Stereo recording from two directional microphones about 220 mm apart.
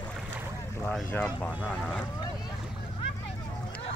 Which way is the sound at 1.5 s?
5° right (ahead or behind).